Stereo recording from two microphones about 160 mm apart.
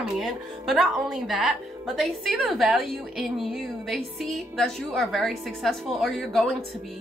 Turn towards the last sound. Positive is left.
turn(degrees=0)  # may be behind; listen again after turning